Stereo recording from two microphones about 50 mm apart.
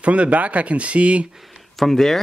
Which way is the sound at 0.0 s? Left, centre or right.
Right.